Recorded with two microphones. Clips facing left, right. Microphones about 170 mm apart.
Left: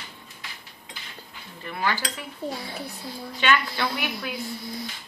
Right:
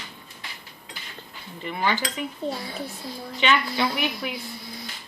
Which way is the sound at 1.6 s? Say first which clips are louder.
Right 2 dB; 20° right (ahead or behind).